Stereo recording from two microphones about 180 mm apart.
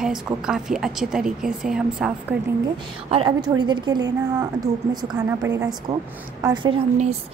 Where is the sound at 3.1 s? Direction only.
25° right (ahead or behind).